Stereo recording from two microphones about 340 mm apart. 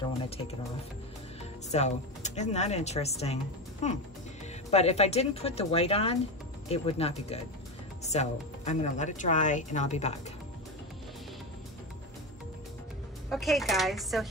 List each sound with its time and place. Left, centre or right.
1.7 s speech: centre
13.3 s speech: centre